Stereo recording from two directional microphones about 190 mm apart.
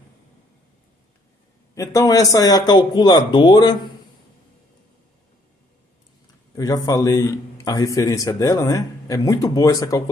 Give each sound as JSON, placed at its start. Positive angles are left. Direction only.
{"t": 1.8, "sound": "a man's voice", "side_deg": 15}
{"t": 6.5, "sound": "a man's voice", "side_deg": 20}